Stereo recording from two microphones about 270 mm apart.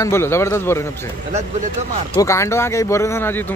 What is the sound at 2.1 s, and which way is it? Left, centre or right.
Speech, centre.